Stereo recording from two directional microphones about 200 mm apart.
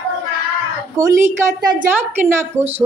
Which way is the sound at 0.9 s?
15° right (ahead or behind).